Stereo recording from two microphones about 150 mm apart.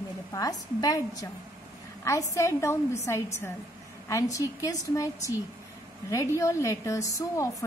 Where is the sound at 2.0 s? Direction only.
20° left (ahead or behind).